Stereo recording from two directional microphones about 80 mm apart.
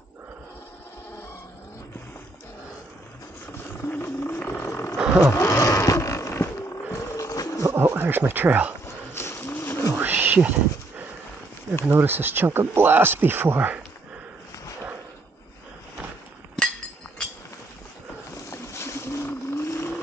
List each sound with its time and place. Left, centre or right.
4.0 s wild animals: left
4.4 s wild animals: left
4.6 s roaring cats: left
4.9 s vehicle: centre
5.3 s a sound: left
7.7 s a sound: right
8.8 s wild animals: left
9.9 s wild animals: right
11.9 s speech: right
16.6 s chink: centre
18.5 s vehicle: left